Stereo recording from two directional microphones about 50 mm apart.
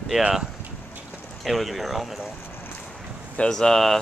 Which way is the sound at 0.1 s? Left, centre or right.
Centre.